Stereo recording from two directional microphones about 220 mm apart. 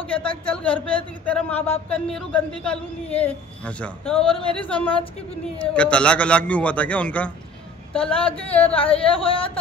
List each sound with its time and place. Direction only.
0.3 s a woman's voice: 5° left (ahead or behind)
8.7 s speech: 25° left (ahead or behind)